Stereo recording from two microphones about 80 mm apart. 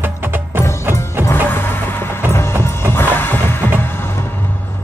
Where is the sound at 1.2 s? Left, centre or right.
Left.